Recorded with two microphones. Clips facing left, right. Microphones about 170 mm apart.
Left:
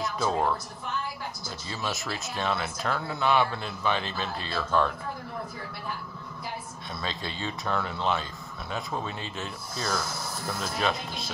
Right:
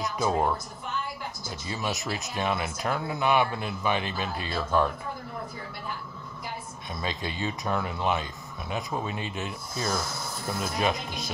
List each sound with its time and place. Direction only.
0.0 s speech: 15° right (ahead or behind)
1.7 s speech: 15° right (ahead or behind)
6.9 s speech: 15° right (ahead or behind)